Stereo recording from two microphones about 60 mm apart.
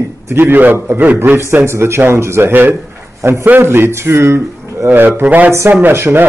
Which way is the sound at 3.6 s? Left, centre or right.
Right.